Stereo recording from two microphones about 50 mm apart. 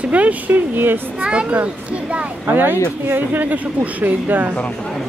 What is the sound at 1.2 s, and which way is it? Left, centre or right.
A child's voice, right.